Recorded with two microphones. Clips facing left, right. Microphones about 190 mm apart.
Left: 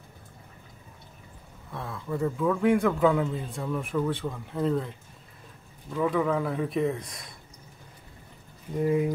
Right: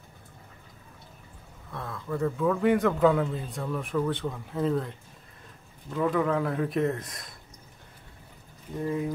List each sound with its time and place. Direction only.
1.7 s a man's voice: 10° left (ahead or behind)
8.7 s speech: 15° left (ahead or behind)